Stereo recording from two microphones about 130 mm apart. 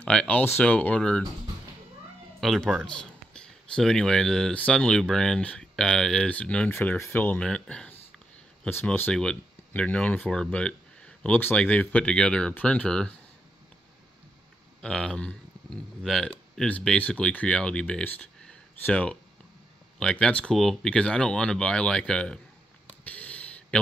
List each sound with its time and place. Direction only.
0.0 s speech: 10° left (ahead or behind)
2.4 s speech: centre (ahead or behind)
14.8 s speech: 5° left (ahead or behind)
22.8 s a sound: 10° left (ahead or behind)